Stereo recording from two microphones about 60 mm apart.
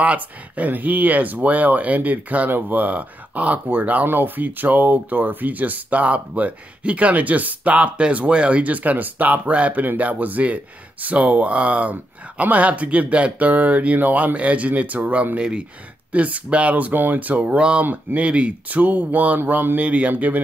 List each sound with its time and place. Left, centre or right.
0.0 s speech: right